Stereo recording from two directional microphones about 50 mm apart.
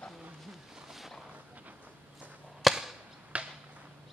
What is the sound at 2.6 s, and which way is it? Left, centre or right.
Chop, centre.